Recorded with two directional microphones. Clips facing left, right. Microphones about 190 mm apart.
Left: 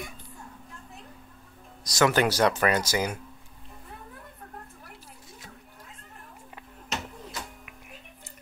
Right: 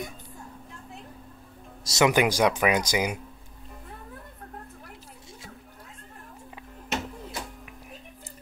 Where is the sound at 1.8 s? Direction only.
20° right (ahead or behind).